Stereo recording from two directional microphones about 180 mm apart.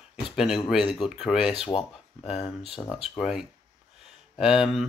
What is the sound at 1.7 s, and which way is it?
Speech, 30° left (ahead or behind).